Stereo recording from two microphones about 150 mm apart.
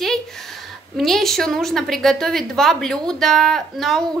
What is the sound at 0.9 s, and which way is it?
A woman's voice, centre (ahead or behind).